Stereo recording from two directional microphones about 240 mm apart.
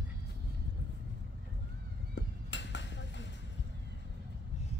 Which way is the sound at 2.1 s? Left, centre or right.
Left.